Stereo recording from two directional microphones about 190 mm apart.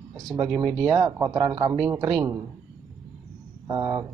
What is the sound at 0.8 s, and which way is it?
Speech, 20° right (ahead or behind).